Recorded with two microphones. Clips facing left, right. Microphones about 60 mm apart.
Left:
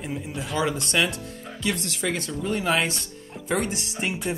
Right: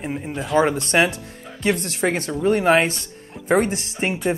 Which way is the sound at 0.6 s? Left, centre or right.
Right.